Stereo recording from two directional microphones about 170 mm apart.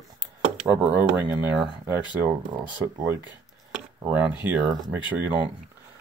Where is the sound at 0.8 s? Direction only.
10° right (ahead or behind).